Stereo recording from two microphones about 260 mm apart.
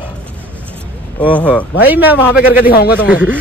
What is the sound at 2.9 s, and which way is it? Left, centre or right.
Speech, centre.